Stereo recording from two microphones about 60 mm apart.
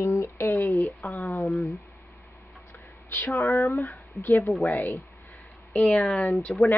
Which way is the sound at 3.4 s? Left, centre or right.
Left.